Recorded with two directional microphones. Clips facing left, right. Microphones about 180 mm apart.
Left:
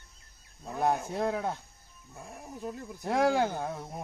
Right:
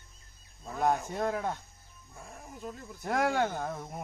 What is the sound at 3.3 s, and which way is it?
Speech, 15° left (ahead or behind).